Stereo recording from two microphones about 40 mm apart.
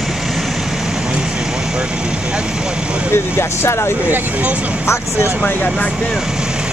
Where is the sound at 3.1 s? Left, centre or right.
Left.